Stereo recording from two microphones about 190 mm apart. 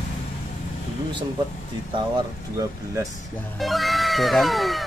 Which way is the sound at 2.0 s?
20° right (ahead or behind).